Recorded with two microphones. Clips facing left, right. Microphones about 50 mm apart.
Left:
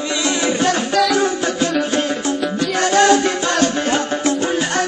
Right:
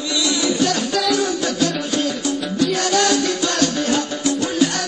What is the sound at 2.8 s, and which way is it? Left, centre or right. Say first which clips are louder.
Music: left 9 dB; left.